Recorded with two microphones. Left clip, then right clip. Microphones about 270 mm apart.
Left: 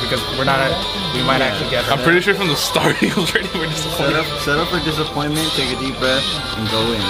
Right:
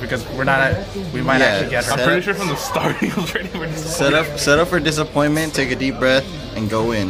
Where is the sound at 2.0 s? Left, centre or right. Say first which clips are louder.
Left 3 dB; left.